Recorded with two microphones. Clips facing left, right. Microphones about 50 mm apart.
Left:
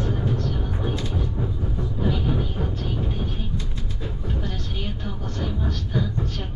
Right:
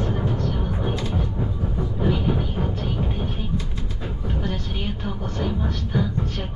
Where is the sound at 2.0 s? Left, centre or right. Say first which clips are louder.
Right 2 dB; centre.